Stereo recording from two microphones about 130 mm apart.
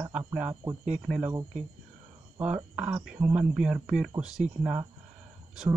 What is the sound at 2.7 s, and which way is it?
Speech, 10° right (ahead or behind).